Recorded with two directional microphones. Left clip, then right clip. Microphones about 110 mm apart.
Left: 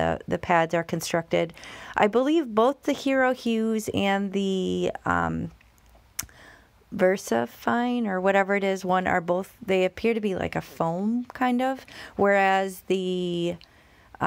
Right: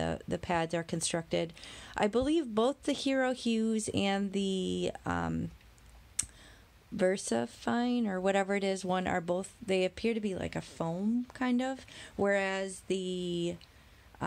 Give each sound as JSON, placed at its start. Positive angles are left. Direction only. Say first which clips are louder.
{"t": 0.0, "sound": "speech", "louder": "left 9 dB", "side_deg": 10}
{"t": 6.2, "sound": "clicking", "louder": "left 3 dB", "side_deg": 10}
{"t": 7.0, "sound": "speech", "louder": "left 8 dB", "side_deg": 5}
{"t": 10.2, "sound": "speech", "louder": "left 9 dB", "side_deg": 35}
{"t": 10.9, "sound": "speech", "louder": "left 7 dB", "side_deg": 20}
{"t": 12.4, "sound": "speech", "louder": "left 11 dB", "side_deg": 55}